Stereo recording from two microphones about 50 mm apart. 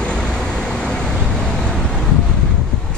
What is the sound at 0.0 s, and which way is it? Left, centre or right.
Vehicle, centre.